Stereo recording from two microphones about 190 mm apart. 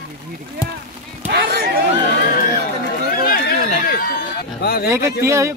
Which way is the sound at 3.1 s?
50° left (ahead or behind).